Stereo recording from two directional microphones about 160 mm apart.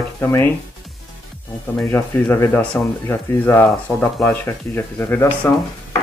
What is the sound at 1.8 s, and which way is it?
Speech, 10° left (ahead or behind).